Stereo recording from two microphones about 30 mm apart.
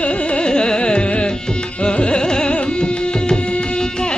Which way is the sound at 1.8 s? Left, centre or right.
Left.